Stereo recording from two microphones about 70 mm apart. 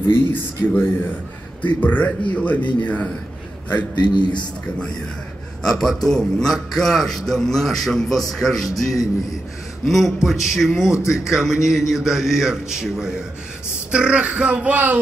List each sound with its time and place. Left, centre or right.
0.1 s speech: left
1.6 s a man's voice: left
4.0 s a man's voice: left
5.6 s a man's voice: centre
9.8 s a man's voice: centre; by 15.0 s right